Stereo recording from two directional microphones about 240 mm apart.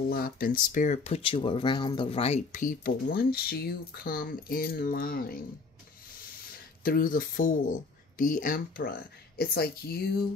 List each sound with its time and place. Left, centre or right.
0.1 s speech: left
6.8 s speech: left